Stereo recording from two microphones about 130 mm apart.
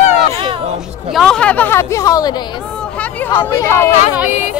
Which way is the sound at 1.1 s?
Centre (ahead or behind).